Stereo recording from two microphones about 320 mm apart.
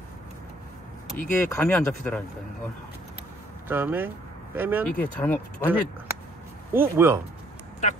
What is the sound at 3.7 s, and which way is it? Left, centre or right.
Speech, centre.